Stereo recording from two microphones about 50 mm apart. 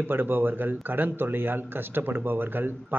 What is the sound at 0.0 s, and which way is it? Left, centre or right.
Speech, right.